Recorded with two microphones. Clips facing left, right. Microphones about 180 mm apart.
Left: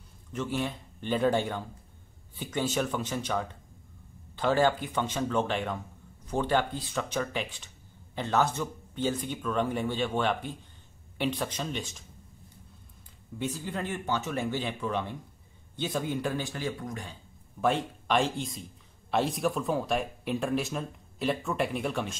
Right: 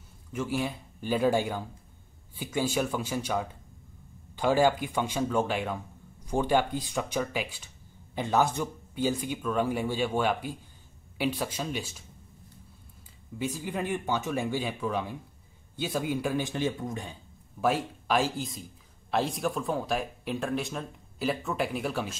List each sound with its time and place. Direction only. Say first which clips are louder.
0.3 s speech: right 1 dB; 10° right (ahead or behind)
13.4 s speech: right 1 dB; 10° right (ahead or behind)
16.4 s speech: right 4 dB; 20° right (ahead or behind)
17.6 s a man's voice: even; 5° right (ahead or behind)